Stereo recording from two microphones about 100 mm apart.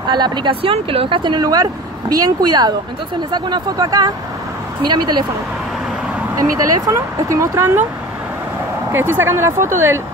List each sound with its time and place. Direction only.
0.1 s speech: 50° right (ahead or behind)
0.6 s speech: 65° right (ahead or behind); by 5.2 s 45° right (ahead or behind)
6.9 s speech: 30° right (ahead or behind)
8.9 s speech: 25° right (ahead or behind)